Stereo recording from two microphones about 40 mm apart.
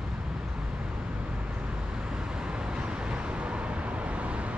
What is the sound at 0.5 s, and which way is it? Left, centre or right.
Vehicle, right.